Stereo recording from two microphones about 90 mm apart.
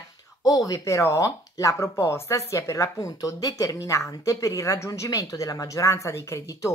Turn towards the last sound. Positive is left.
turn(degrees=35)  # may be behind; listen again after turning